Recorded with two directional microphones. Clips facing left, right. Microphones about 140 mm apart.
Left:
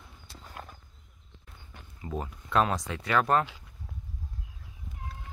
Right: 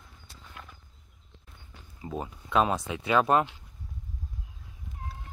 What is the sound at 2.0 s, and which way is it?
Speech, 10° right (ahead or behind).